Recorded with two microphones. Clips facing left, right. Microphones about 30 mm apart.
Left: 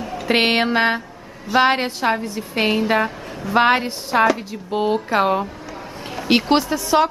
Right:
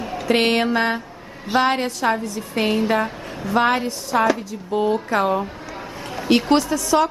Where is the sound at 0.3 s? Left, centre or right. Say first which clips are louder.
Left 1 dB; left.